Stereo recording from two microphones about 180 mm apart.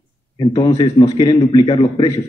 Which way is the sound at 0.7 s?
35° left (ahead or behind).